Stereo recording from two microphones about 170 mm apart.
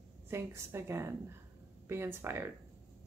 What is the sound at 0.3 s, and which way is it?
Speech, 15° right (ahead or behind).